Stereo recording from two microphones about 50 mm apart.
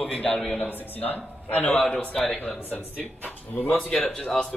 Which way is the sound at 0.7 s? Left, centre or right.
Left.